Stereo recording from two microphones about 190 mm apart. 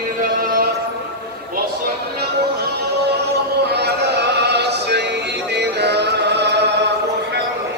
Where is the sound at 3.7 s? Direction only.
60° right (ahead or behind).